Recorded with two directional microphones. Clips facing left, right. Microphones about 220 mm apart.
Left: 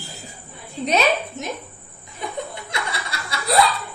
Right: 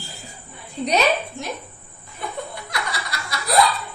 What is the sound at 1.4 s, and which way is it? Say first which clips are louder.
Speech: left 1 dB; 20° left (ahead or behind).